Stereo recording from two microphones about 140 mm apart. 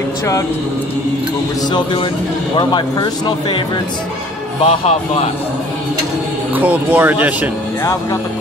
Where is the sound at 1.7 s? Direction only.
35° left (ahead or behind).